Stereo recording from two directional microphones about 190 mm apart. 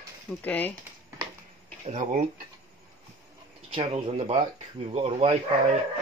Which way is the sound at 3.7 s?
30° right (ahead or behind).